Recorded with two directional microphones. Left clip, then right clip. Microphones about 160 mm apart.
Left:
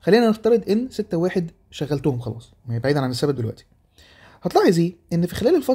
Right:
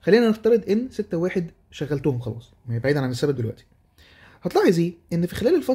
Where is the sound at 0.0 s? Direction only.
20° left (ahead or behind).